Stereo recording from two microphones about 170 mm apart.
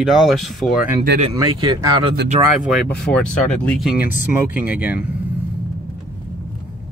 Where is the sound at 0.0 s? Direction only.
Centre (ahead or behind).